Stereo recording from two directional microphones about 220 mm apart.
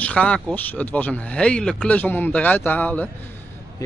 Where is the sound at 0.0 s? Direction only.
5° left (ahead or behind).